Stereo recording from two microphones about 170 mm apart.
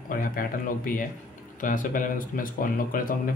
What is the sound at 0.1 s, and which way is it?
Speech, 55° left (ahead or behind).